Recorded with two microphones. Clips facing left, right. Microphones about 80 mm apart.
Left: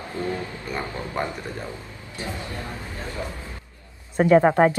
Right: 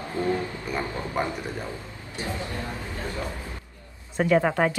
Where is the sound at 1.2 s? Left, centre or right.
Centre.